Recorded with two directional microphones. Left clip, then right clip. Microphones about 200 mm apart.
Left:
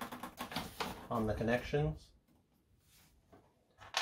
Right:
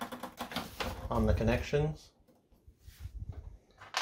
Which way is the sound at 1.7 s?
50° right (ahead or behind).